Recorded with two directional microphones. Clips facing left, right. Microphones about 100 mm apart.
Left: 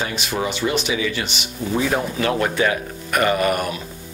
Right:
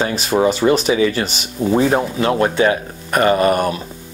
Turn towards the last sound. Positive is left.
turn(degrees=-35)  # may be behind; listen again after turning